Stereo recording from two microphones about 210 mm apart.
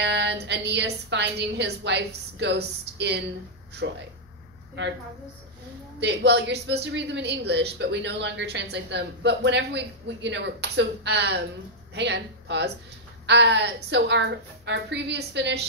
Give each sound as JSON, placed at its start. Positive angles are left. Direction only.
{"t": 0.0, "sound": "a woman's voice", "side_deg": -55}
{"t": 5.9, "sound": "a woman's voice", "side_deg": -55}